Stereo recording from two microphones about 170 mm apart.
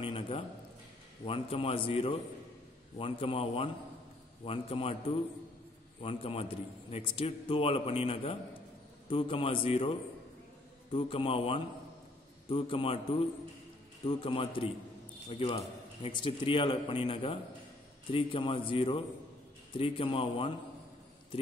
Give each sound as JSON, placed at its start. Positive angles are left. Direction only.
{"t": 0.0, "sound": "a sound", "side_deg": 35}
{"t": 1.2, "sound": "a man's voice", "side_deg": 35}
{"t": 5.9, "sound": "a man's voice", "side_deg": 35}
{"t": 14.0, "sound": "a man's voice", "side_deg": 35}